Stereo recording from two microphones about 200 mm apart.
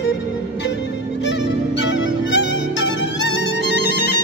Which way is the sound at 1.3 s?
60° left (ahead or behind).